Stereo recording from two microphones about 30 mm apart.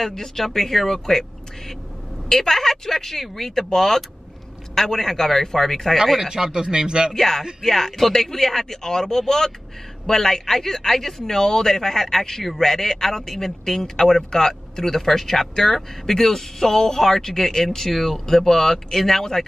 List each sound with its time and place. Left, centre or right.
0.1 s speech: centre
2.2 s speech: centre
6.2 s a man's voice: right
7.2 s speech: centre